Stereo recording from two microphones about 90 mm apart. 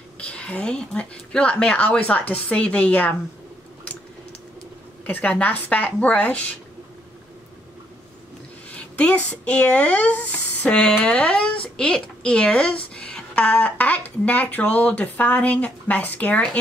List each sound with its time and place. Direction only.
0.2 s speech: 15° left (ahead or behind)
5.0 s speech: 20° left (ahead or behind)
8.7 s speech: 15° left (ahead or behind)